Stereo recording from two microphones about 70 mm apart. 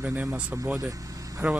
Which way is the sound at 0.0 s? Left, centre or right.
Right.